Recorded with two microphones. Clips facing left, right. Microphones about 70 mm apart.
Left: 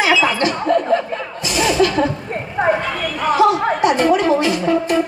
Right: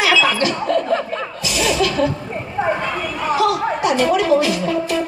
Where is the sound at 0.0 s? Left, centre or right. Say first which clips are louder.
Left 1 dB; left.